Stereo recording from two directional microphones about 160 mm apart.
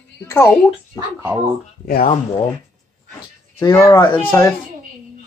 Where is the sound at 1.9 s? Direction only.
65° left (ahead or behind).